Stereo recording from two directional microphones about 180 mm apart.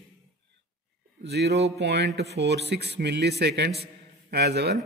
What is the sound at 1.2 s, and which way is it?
A man's voice, 65° right (ahead or behind).